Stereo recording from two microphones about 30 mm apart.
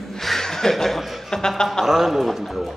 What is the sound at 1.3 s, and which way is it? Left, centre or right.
Speech, left.